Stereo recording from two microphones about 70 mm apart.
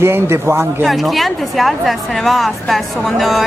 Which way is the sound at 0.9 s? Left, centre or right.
Centre.